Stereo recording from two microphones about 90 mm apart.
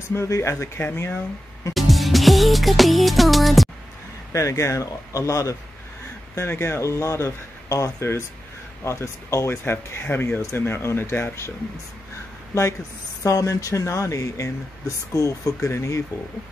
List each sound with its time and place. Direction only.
0.1 s speech: 30° left (ahead or behind)
1.7 s music: centre (ahead or behind)
4.3 s speech: 35° left (ahead or behind)
13.2 s speech: 40° left (ahead or behind)